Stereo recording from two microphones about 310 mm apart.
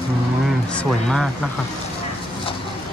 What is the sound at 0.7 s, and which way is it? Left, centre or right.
Speech, centre.